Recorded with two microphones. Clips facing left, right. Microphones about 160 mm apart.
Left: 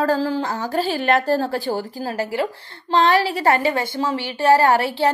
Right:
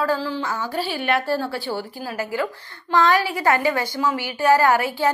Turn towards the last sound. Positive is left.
turn(degrees=30)  # may be behind; listen again after turning